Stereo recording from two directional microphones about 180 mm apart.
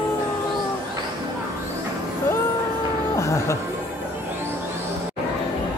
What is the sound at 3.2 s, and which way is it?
Music, 15° left (ahead or behind).